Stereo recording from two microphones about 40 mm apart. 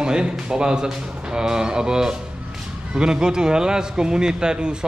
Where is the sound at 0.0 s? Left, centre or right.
Right.